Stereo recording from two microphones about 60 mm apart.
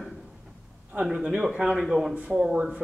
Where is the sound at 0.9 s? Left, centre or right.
Centre.